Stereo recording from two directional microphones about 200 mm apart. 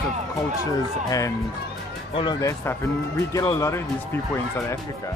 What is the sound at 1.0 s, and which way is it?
Speech, 15° left (ahead or behind).